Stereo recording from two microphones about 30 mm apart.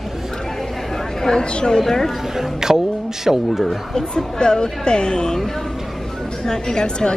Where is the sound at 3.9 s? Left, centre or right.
Left.